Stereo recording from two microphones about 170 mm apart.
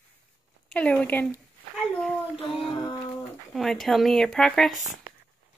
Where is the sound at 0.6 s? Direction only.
5° left (ahead or behind).